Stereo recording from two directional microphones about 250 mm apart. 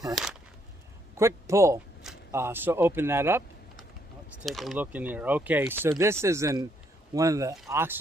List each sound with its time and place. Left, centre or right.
0.1 s speech: centre